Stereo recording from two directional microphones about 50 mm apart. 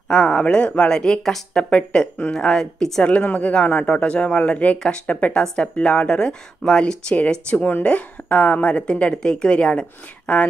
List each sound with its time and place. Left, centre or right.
0.1 s speech: centre
0.9 s speech: centre
1.6 s a woman's voice: left
2.3 s speech: centre
3.0 s a woman's voice: left
3.5 s a woman's voice: left
7.2 s a woman's voice: left